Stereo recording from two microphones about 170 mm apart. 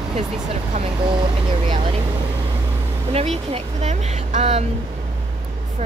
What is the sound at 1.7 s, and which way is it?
Speech, 35° right (ahead or behind).